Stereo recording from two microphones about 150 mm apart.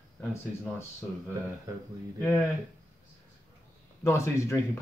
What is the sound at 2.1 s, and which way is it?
Speech, 5° left (ahead or behind).